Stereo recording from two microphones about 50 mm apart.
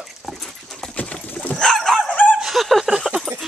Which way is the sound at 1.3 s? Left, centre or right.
Left.